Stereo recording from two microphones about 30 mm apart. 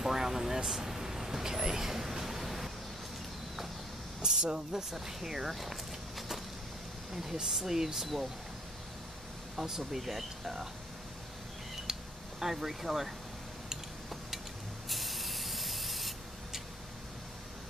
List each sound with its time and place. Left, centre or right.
0.0 s speech: centre
4.2 s speech: right
4.9 s speech: centre
7.4 s speech: centre
9.6 s speech: centre
11.9 s a sound: centre
14.9 s spray: centre